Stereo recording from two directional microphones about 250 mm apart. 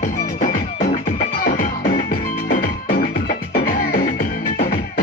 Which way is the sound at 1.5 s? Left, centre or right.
Left.